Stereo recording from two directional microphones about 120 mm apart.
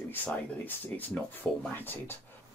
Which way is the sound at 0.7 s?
10° left (ahead or behind).